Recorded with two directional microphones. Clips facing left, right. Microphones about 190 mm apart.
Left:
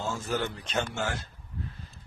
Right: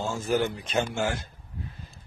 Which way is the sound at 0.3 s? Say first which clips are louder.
Right 8 dB; 10° right (ahead or behind).